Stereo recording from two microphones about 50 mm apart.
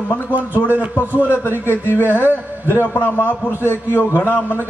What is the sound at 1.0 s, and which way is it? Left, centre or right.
A man's voice, left.